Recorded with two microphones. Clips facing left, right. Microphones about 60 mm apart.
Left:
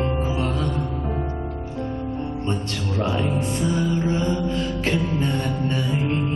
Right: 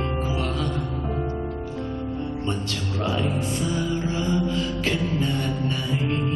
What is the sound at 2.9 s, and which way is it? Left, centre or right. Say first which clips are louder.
Music: left 2 dB; left.